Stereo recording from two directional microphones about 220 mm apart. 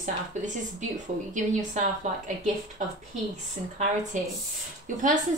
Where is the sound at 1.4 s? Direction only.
35° right (ahead or behind).